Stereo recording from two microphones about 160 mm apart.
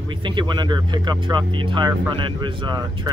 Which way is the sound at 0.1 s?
30° right (ahead or behind).